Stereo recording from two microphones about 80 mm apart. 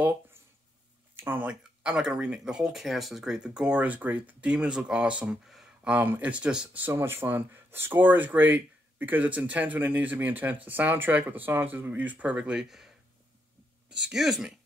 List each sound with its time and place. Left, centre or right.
0.0 s a sound: right
1.1 s speech: right
1.5 s speech: centre